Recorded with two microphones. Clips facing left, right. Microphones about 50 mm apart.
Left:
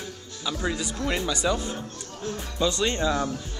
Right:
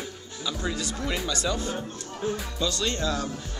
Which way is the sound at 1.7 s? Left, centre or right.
Centre.